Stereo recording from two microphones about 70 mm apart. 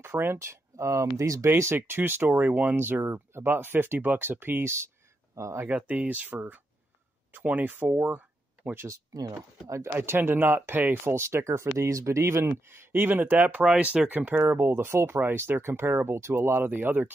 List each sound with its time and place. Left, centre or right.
0.0 s speech: right
1.0 s speech: right
1.5 s speech: right
5.3 s speech: right
5.7 s speech: centre
9.1 s speech: right
10.0 s speech: right